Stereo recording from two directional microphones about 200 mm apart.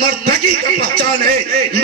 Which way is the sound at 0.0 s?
45° right (ahead or behind).